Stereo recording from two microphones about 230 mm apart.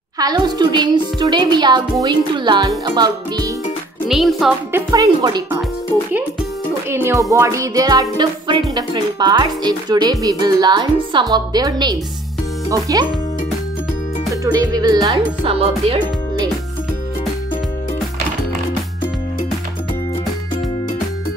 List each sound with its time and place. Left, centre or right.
0.2 s a child's voice: centre
4.1 s speech: centre
4.9 s speech: centre
6.9 s a child's voice: centre
14.4 s a child's voice: centre